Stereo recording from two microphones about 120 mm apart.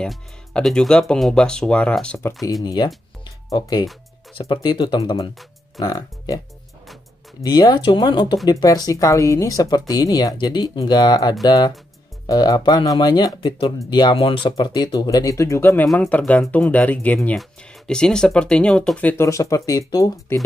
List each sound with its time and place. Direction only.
0.0 s speech: 5° left (ahead or behind)
2.6 s speech: 35° left (ahead or behind)
7.4 s speech: 35° left (ahead or behind); by 19.2 s 15° left (ahead or behind)
19.2 s speech: 25° left (ahead or behind)
20.3 s speech: 20° left (ahead or behind)